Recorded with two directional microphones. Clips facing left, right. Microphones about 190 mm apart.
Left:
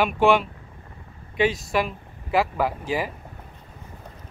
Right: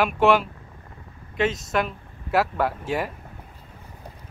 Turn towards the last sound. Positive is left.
turn(degrees=0)  # may be behind; listen again after turning